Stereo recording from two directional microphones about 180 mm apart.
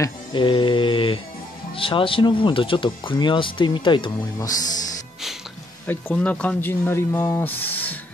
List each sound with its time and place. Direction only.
0.0 s speech: 25° left (ahead or behind)
5.9 s speech: 5° left (ahead or behind)